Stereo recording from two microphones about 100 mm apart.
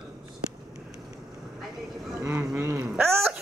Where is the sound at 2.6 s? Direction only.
25° right (ahead or behind).